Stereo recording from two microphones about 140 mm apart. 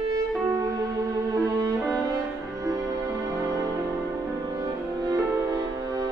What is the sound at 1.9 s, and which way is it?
Music, 25° right (ahead or behind).